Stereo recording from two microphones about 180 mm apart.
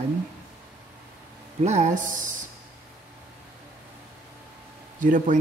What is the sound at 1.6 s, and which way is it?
Speech, 40° right (ahead or behind).